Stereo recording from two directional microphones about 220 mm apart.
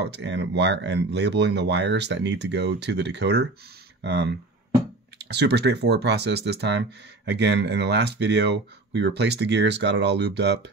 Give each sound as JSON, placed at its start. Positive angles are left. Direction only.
{"t": 0.0, "sound": "speech", "side_deg": -50}